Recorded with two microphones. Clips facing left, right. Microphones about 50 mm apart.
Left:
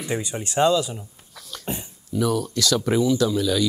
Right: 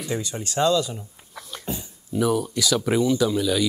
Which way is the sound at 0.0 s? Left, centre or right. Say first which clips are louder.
Left 1 dB; left.